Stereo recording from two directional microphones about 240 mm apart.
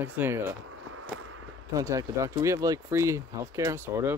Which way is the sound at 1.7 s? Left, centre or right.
Centre.